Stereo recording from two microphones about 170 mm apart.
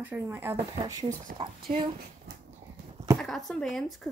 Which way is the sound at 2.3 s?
75° right (ahead or behind).